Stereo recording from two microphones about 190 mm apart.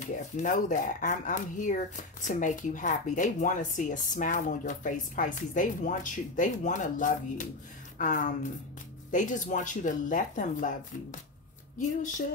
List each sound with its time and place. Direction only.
0.0 s speech: 40° left (ahead or behind)